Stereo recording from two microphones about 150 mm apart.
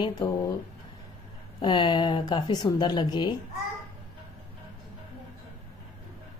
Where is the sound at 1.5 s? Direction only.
30° left (ahead or behind).